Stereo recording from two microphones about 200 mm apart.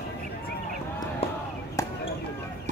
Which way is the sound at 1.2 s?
30° left (ahead or behind).